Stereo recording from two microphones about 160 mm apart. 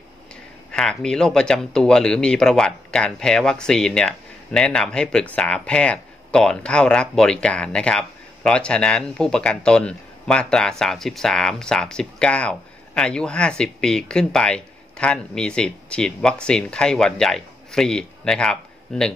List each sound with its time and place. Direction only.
0.7 s speech: 5° left (ahead or behind)